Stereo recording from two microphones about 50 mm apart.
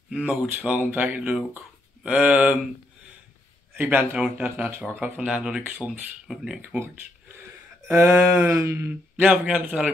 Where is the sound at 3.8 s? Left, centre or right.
Right.